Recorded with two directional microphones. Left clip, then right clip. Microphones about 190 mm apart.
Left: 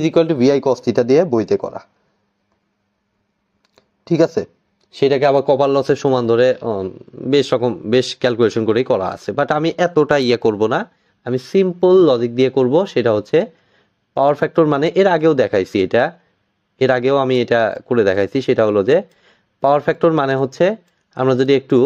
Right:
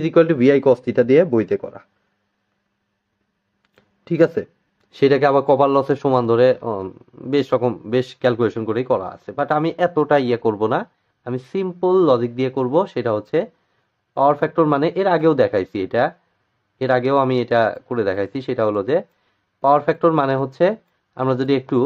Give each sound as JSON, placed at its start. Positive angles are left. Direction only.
{"t": 0.0, "sound": "speech", "side_deg": 15}
{"t": 3.7, "sound": "a sound", "side_deg": 5}
{"t": 4.9, "sound": "a man's voice", "side_deg": 5}